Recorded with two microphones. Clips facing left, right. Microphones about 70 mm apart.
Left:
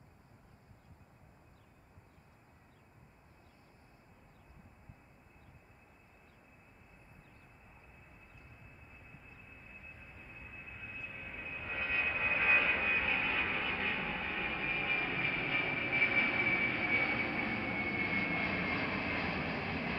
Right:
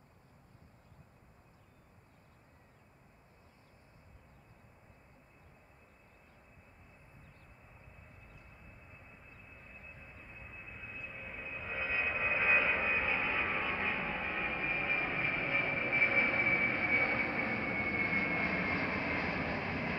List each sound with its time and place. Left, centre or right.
10.4 s vehicle: centre